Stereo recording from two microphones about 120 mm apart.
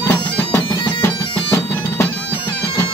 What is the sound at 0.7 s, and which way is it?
Bagpipes, 45° left (ahead or behind).